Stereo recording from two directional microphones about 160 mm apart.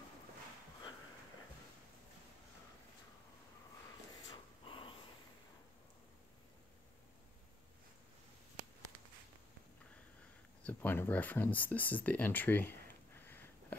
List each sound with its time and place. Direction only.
4.3 s a sound: 30° left (ahead or behind)
10.7 s speech: 10° left (ahead or behind)
13.2 s sniff: 10° left (ahead or behind)